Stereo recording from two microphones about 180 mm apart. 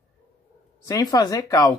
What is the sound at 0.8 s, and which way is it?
Speech, 20° left (ahead or behind).